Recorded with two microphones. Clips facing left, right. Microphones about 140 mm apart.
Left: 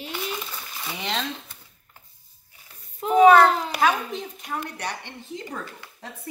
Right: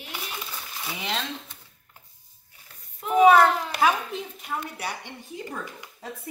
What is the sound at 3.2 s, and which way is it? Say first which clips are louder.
A child's voice: left 2 dB; 5° right (ahead or behind).